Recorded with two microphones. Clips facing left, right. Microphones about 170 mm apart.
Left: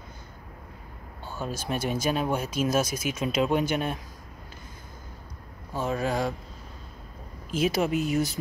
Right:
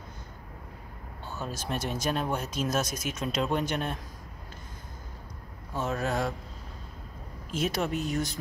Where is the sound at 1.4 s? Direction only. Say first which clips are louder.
Left 4 dB; centre (ahead or behind).